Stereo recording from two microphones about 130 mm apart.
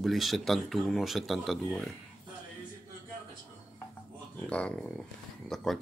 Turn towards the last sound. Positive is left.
turn(degrees=0)  # may be behind; listen again after turning